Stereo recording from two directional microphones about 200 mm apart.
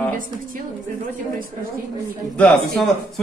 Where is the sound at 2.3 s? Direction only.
5° left (ahead or behind).